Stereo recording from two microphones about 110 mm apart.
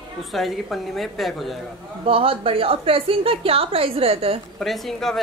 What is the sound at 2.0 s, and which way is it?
A woman's voice, 60° right (ahead or behind).